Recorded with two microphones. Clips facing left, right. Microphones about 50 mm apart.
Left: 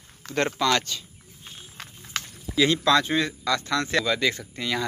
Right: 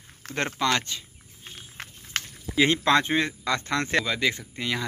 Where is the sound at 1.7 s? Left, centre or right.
Right.